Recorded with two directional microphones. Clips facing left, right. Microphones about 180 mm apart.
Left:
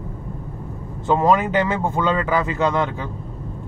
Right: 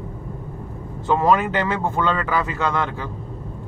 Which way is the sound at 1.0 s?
20° left (ahead or behind).